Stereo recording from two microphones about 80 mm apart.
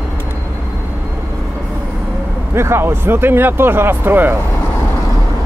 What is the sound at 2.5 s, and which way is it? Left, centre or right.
Speech, right.